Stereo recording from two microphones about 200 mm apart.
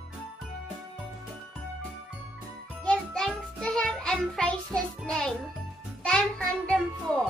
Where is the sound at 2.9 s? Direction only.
5° left (ahead or behind).